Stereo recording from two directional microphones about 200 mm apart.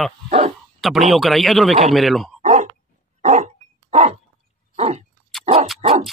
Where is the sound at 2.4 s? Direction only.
35° right (ahead or behind).